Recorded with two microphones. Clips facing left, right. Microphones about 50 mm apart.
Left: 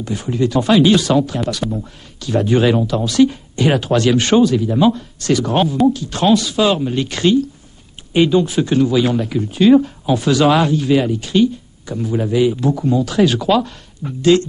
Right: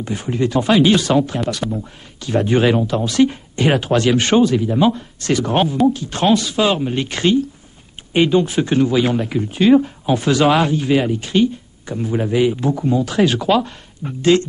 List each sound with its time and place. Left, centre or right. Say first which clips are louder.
0.0 s speech: left 1 dB; right
1.6 s speech: left 1 dB; centre
2.2 s speech: left 1 dB; right
5.2 s speech: left 1 dB; right